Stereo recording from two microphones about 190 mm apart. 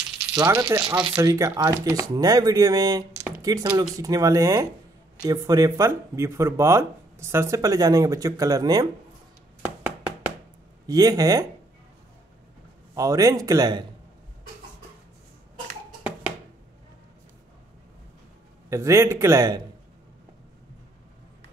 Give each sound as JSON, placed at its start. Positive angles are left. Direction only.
{"t": 0.4, "sound": "speech", "side_deg": -15}
{"t": 10.9, "sound": "speech", "side_deg": -20}
{"t": 12.9, "sound": "speech", "side_deg": -20}
{"t": 18.7, "sound": "speech", "side_deg": -15}